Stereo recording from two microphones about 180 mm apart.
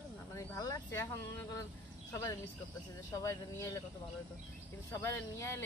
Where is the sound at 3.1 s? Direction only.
15° left (ahead or behind).